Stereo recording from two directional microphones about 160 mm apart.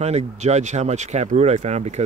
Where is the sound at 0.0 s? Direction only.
40° right (ahead or behind).